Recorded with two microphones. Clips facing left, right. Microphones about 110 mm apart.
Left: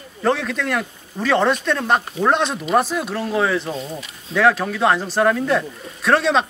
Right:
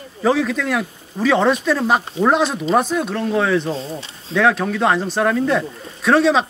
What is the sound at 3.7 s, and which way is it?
Speech, 30° right (ahead or behind).